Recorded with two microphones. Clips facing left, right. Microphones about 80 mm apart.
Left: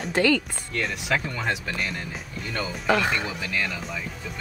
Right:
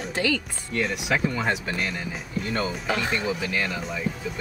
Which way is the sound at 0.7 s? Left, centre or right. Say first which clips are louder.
Right 1 dB; centre.